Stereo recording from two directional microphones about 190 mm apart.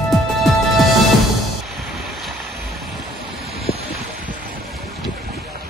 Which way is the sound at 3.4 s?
55° left (ahead or behind).